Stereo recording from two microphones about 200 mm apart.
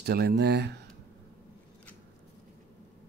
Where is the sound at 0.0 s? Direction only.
50° right (ahead or behind).